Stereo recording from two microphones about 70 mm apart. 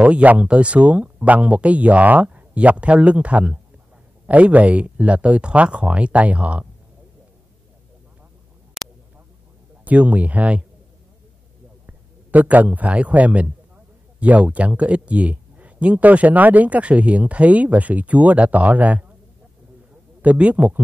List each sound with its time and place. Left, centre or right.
0.0 s speech: centre
8.8 s a sound: centre
9.8 s speech: centre
11.8 s a man's voice: right
20.2 s speech: centre